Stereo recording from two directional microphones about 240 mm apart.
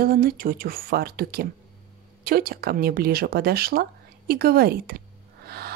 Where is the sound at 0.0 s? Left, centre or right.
Right.